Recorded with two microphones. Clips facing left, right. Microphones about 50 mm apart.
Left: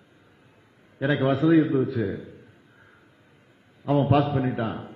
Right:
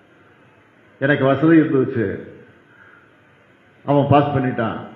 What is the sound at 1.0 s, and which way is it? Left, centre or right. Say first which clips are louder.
A man's voice: right 7 dB; right.